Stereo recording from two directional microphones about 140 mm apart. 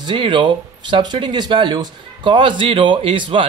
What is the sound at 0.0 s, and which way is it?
Speech, 35° right (ahead or behind).